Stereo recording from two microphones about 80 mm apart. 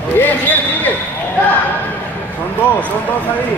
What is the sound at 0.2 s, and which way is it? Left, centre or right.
Basketball bounce, left.